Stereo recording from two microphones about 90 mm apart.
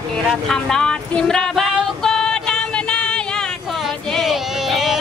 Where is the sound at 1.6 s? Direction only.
10° right (ahead or behind).